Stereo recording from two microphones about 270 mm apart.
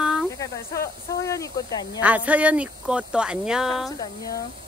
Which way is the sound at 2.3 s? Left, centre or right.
Centre.